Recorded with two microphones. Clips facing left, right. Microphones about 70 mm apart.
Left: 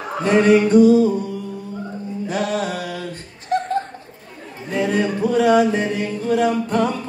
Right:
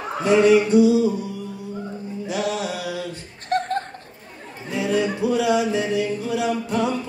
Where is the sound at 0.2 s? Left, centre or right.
Left.